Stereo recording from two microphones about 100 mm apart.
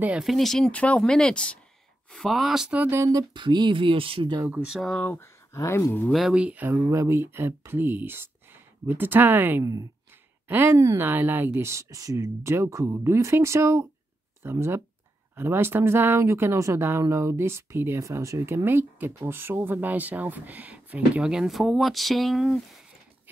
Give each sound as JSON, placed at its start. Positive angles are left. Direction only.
{"t": 0.2, "sound": "speech", "side_deg": 0}
{"t": 0.7, "sound": "speech", "side_deg": 10}
{"t": 2.1, "sound": "speech", "side_deg": 0}
{"t": 2.8, "sound": "speech", "side_deg": -25}
{"t": 3.3, "sound": "speech", "side_deg": -50}
{"t": 4.6, "sound": "speech", "side_deg": -5}
{"t": 4.9, "sound": "speech", "side_deg": 15}
{"t": 6.1, "sound": "speech", "side_deg": -5}
{"t": 6.9, "sound": "speech", "side_deg": -30}
{"t": 9.6, "sound": "speech", "side_deg": -30}
{"t": 10.5, "sound": "speech", "side_deg": -20}